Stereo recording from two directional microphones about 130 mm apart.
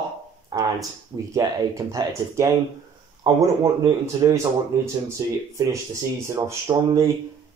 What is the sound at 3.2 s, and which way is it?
Speech, 35° right (ahead or behind).